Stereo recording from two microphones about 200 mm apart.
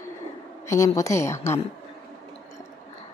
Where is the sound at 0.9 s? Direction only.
15° left (ahead or behind).